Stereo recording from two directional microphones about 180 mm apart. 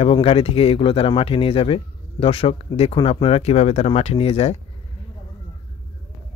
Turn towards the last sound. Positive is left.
turn(degrees=35)  # may be behind; listen again after turning